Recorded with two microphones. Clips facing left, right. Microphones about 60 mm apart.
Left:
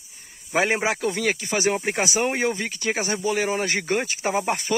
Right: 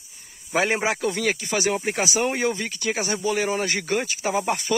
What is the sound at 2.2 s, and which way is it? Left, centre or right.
Speech, centre.